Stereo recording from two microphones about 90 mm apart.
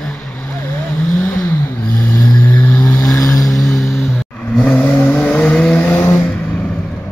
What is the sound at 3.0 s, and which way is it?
Vehicle, 40° left (ahead or behind).